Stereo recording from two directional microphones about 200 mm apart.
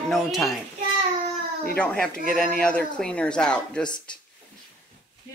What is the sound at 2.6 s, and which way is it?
A woman's voice, 5° left (ahead or behind).